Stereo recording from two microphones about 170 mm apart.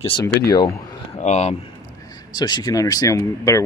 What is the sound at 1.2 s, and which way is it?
Speech, 40° left (ahead or behind).